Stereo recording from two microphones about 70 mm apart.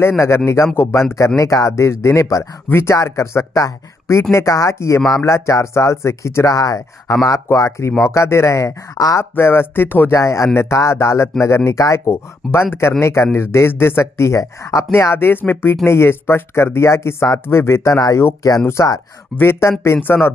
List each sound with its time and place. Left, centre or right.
1.1 s speech: left
7.2 s speech: left
8.9 s speech: left
9.2 s speech: left
10.1 s speech: left
12.1 s speech: left
14.9 s speech: left
19.3 s speech: left